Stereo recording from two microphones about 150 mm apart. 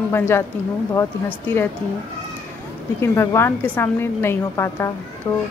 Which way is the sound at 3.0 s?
15° left (ahead or behind).